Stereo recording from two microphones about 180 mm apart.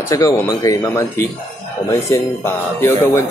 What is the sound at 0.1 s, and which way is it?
Speech, 20° left (ahead or behind).